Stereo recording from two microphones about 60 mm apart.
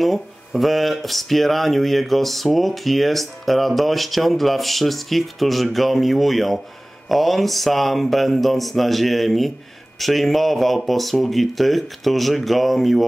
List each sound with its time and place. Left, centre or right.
0.0 s speech: centre